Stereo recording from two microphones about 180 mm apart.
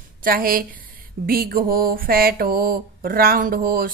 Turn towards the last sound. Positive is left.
turn(degrees=-55)  # may be behind; listen again after turning